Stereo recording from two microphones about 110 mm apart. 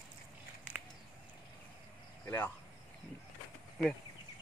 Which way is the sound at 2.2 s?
15° left (ahead or behind).